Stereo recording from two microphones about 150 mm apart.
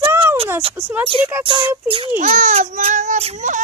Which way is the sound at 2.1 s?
55° right (ahead or behind).